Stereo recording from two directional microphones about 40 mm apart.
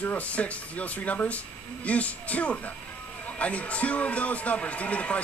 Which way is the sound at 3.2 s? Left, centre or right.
Left.